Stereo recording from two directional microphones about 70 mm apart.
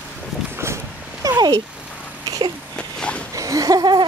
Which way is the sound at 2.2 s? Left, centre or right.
Right.